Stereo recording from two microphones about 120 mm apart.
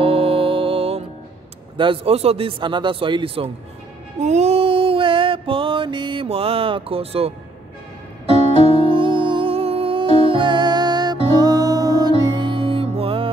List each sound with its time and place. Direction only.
0.0 s music: 50° right (ahead or behind)
1.8 s a man's voice: 50° right (ahead or behind)
4.2 s mantra: 70° right (ahead or behind); by 7.3 s 55° right (ahead or behind)
8.7 s music: 45° right (ahead or behind)